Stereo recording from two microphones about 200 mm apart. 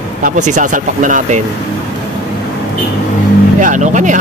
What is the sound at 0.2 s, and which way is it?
Speech, 40° right (ahead or behind).